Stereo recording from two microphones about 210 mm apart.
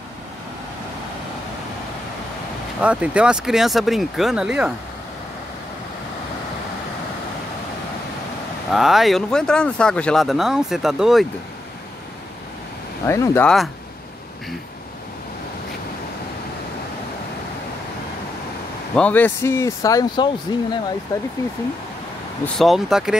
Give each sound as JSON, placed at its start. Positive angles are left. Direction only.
{"t": 2.8, "sound": "speech", "side_deg": -5}
{"t": 8.7, "sound": "speech", "side_deg": 0}
{"t": 13.0, "sound": "speech", "side_deg": 15}
{"t": 18.9, "sound": "speech", "side_deg": 5}
{"t": 22.4, "sound": "speech", "side_deg": 0}